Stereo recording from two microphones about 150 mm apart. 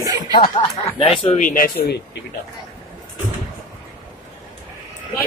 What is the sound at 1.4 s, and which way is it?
Speech, 65° left (ahead or behind).